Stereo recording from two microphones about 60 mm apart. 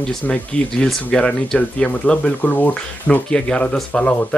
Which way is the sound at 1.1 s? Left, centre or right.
Centre.